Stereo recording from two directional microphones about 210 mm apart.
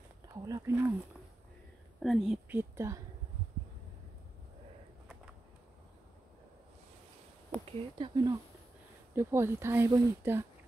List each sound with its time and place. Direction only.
0.3 s speech: 15° right (ahead or behind)
2.0 s speech: centre (ahead or behind)
2.7 s speech: 15° right (ahead or behind)
7.6 s speech: 20° right (ahead or behind)